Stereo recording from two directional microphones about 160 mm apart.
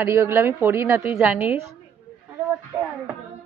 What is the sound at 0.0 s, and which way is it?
A woman's voice, 15° right (ahead or behind).